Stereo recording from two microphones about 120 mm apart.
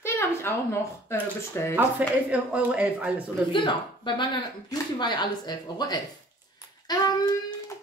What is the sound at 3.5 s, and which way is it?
A woman's voice, 40° left (ahead or behind).